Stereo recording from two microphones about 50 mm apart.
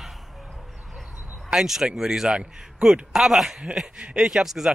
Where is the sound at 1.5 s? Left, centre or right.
Centre.